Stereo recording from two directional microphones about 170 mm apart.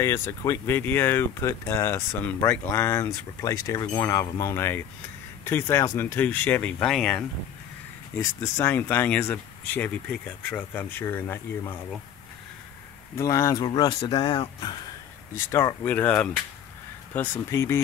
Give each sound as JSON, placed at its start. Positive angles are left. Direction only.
{"t": 0.0, "sound": "speech", "side_deg": 15}
{"t": 8.2, "sound": "speech", "side_deg": 15}
{"t": 13.2, "sound": "speech", "side_deg": 20}
{"t": 15.3, "sound": "speech", "side_deg": 15}